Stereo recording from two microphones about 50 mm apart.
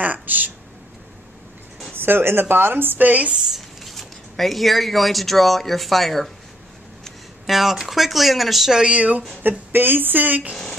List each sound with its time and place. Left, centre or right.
0.0 s a sound: right
2.0 s speech: right
3.1 s speech: right
3.3 s speech: centre
7.4 s speech: centre
8.8 s speech: right
9.4 s speech: right
10.5 s speech: centre